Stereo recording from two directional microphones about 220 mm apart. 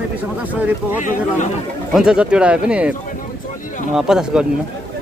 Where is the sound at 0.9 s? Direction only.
35° left (ahead or behind).